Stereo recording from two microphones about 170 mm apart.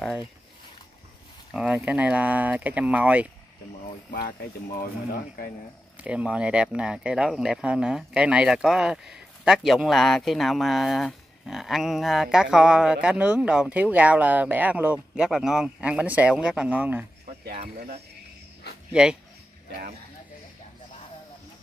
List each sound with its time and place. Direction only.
1.5 s speech: 5° right (ahead or behind)
6.0 s speech: 5° right (ahead or behind)
17.5 s speech: 50° right (ahead or behind)
18.9 s speech: 5° right (ahead or behind)